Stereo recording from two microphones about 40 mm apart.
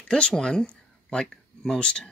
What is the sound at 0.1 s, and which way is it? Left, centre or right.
Speech, centre.